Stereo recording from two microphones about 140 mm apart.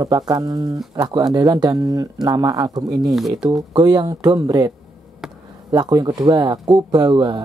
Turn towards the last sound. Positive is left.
turn(degrees=-30)  # may be behind; listen again after turning